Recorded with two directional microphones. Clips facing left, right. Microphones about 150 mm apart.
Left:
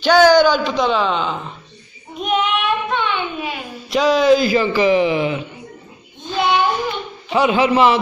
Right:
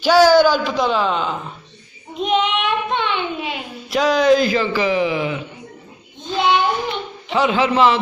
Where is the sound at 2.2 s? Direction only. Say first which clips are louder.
Even; 25° right (ahead or behind).